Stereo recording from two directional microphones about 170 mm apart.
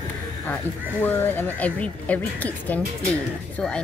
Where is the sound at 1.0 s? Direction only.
10° left (ahead or behind).